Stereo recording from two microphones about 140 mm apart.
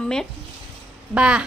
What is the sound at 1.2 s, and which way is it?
Speech, 5° right (ahead or behind).